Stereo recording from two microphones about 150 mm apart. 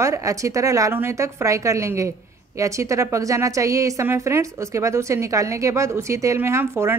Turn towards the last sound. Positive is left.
turn(degrees=-15)  # may be behind; listen again after turning